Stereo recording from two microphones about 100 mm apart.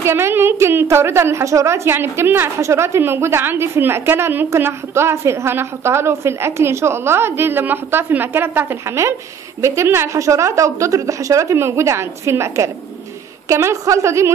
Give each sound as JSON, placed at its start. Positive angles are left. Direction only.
{"t": 0.0, "sound": "a woman's voice", "side_deg": -25}